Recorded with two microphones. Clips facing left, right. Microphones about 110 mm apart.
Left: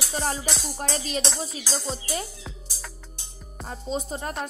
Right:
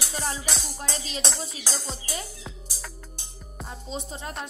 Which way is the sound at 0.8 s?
50° left (ahead or behind).